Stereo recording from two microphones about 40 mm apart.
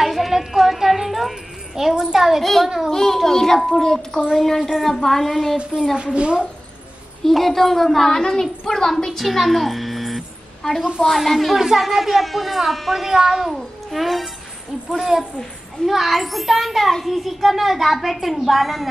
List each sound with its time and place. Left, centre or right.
0.0 s a sound: centre
2.4 s a child's voice: centre
4.6 s a woman's voice: centre
4.8 s a child's voice: centre
5.9 s a woman's voice: right
7.2 s a woman's voice: centre